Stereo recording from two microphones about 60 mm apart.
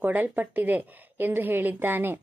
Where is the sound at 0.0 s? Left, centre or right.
Right.